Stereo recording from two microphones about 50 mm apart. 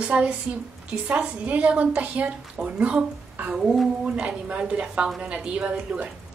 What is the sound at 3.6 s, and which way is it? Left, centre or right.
Speech, centre.